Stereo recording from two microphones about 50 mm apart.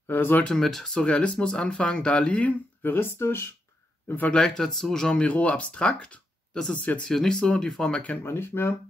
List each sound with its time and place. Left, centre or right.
0.1 s speech: left
0.4 s speech: centre
2.8 s speech: left
4.3 s speech: centre
5.1 s speech: left
8.2 s speech: left